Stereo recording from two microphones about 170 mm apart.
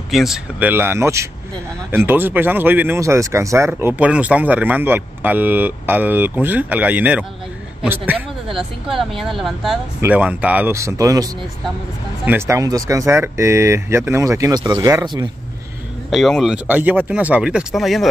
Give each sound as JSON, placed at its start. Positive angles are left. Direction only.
{"t": 0.1, "sound": "speech", "side_deg": 0}
{"t": 12.3, "sound": "speech", "side_deg": -15}
{"t": 16.1, "sound": "speech", "side_deg": 0}